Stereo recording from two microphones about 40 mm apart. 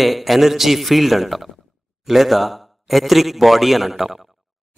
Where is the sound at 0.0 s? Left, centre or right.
Centre.